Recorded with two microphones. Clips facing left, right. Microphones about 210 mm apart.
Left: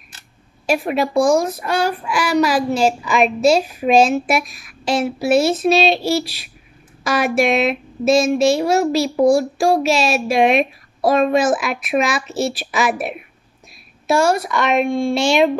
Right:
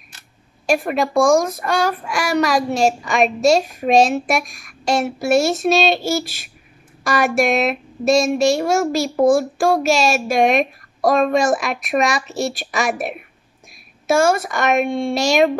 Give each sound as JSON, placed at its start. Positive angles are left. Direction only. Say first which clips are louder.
{"t": 0.7, "sound": "speech", "louder": "even", "side_deg": 0}
{"t": 14.0, "sound": "a woman's voice", "louder": "even", "side_deg": -50}
{"t": 15.1, "sound": "speech", "louder": "right 1 dB", "side_deg": -40}